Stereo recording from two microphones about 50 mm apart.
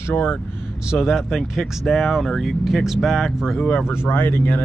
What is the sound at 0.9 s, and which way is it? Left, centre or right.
Speech, centre.